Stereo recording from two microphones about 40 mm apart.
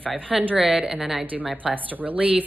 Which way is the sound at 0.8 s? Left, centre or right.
Centre.